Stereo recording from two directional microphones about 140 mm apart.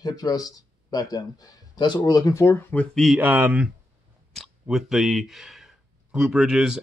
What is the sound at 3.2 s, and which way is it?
Speech, 10° right (ahead or behind).